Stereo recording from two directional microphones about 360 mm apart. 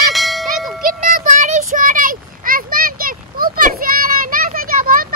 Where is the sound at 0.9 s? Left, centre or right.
Right.